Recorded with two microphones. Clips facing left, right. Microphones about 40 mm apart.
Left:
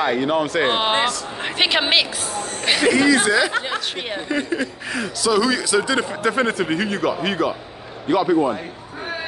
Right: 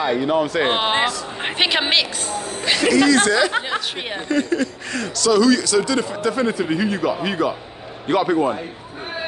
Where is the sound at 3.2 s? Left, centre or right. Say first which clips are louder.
Right 1 dB; centre; by 6.0 s left.